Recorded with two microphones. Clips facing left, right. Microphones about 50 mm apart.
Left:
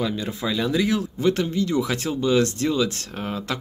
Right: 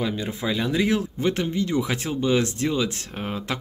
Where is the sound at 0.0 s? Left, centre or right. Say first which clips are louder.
Left 1 dB; centre.